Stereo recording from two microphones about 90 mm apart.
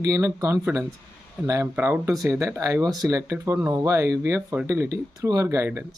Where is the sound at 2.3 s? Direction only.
35° right (ahead or behind).